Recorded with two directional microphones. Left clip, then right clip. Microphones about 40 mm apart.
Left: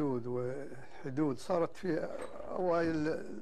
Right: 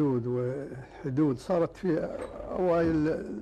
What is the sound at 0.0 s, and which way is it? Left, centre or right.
Speech, left.